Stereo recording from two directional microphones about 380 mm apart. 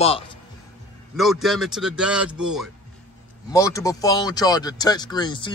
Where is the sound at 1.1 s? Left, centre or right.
Centre.